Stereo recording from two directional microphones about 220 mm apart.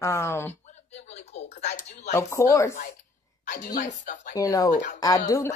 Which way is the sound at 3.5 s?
35° left (ahead or behind).